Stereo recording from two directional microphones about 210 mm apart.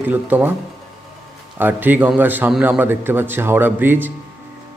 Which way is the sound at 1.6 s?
10° right (ahead or behind).